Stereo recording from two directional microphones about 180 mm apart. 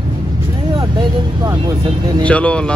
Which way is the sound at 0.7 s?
25° right (ahead or behind).